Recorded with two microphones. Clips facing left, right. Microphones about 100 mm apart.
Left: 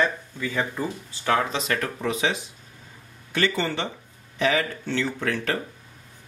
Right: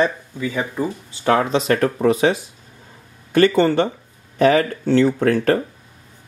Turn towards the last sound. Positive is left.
turn(degrees=-40)  # may be behind; listen again after turning